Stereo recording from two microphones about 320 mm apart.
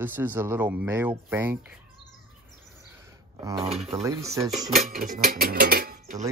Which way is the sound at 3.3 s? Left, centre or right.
Centre.